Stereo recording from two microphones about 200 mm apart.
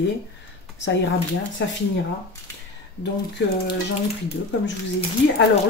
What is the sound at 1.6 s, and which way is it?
Speech, 65° left (ahead or behind).